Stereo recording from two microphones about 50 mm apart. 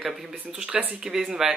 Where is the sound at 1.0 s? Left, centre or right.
Centre.